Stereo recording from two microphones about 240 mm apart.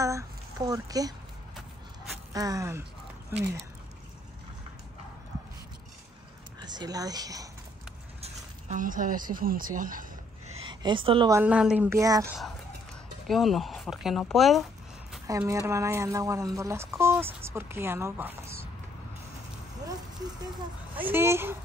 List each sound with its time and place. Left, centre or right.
0.0 s a sound: centre
2.3 s speech: centre
6.6 s speech: centre
8.2 s speech: right
10.5 s a woman's voice: centre
13.3 s speech: centre
15.2 s speech: centre
20.9 s speech: centre